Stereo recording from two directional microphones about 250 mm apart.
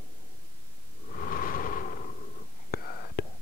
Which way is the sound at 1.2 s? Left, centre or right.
Left.